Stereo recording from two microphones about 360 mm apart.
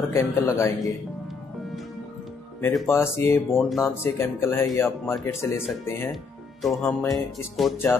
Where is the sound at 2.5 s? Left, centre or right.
Centre.